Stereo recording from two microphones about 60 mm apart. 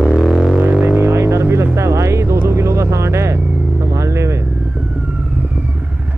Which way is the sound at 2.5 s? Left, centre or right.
Right.